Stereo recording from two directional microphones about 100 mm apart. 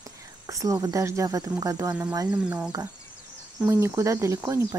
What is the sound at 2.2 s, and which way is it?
Speech, 15° right (ahead or behind).